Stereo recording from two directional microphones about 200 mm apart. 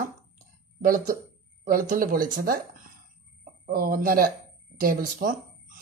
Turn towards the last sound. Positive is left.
turn(degrees=-45)  # may be behind; listen again after turning